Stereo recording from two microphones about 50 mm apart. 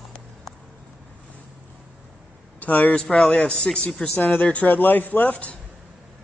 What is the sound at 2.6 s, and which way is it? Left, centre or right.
Speech, left.